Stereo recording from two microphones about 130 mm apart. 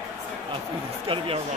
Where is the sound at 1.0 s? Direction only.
45° right (ahead or behind).